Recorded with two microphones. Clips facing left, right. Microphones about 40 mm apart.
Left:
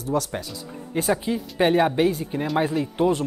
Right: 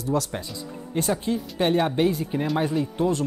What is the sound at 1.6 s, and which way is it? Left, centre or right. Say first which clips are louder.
Speech: left 3 dB; left.